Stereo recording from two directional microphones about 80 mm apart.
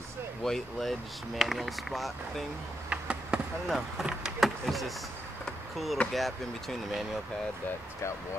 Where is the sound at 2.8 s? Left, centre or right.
Centre.